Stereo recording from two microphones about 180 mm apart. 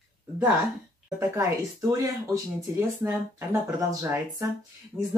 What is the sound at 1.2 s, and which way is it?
Speech, 15° right (ahead or behind).